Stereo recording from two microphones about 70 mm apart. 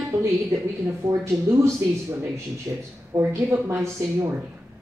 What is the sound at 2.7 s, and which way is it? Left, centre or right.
Speech, right.